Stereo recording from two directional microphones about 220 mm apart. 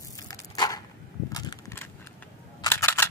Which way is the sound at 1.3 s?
15° left (ahead or behind).